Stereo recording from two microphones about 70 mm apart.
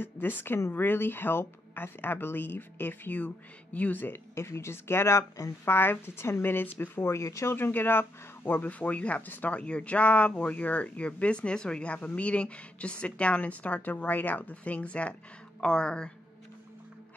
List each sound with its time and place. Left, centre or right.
0.0 s speech: left
4.4 s speech: left
7.1 s speech: left
7.5 s speech: left; by 16.1 s centre